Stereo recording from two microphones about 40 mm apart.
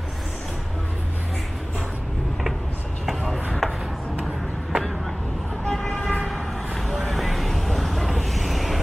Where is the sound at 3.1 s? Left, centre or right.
Centre.